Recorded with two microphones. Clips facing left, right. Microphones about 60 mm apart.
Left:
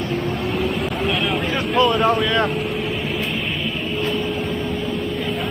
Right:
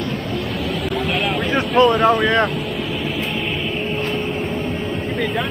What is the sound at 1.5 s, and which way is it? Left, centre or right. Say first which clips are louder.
Vehicle: right 4 dB; right.